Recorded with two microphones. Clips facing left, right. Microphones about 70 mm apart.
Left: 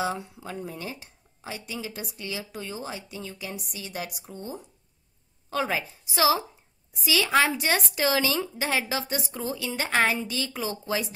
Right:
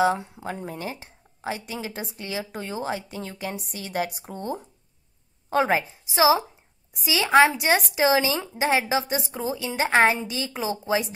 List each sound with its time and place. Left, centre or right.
0.0 s a woman's voice: right
0.4 s speech: right
5.5 s speech: right
6.1 s a woman's voice: right